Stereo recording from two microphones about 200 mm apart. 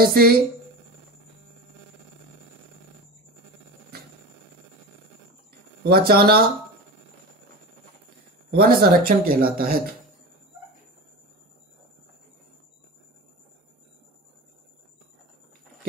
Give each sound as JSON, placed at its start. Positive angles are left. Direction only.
{"t": 0.0, "sound": "speech", "side_deg": -50}
{"t": 5.9, "sound": "speech", "side_deg": -50}
{"t": 8.5, "sound": "speech", "side_deg": -50}